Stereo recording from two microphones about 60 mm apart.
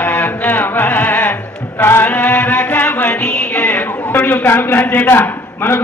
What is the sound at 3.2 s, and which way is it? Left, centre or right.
Speech, centre.